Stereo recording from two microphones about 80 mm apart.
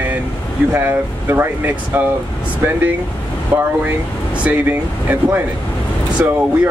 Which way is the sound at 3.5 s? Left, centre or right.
Right.